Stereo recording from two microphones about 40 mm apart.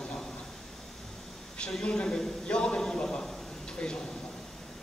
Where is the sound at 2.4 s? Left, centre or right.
Left.